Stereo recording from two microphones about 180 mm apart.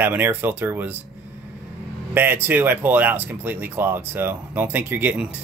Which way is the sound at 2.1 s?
10° right (ahead or behind).